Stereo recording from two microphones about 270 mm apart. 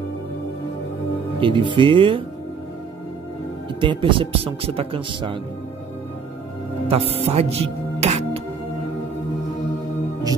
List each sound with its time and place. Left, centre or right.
1.4 s speech: centre
3.8 s speech: centre
6.9 s speech: right